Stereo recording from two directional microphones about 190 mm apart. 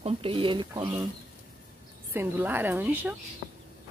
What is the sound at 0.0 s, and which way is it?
Speech, 30° right (ahead or behind).